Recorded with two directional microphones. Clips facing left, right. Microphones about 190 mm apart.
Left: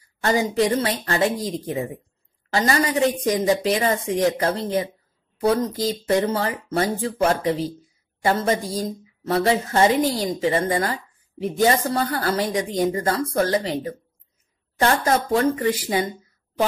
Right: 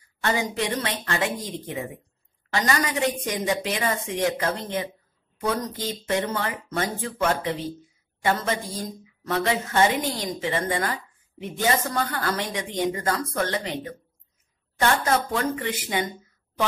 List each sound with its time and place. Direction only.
0.2 s a woman's voice: 35° left (ahead or behind)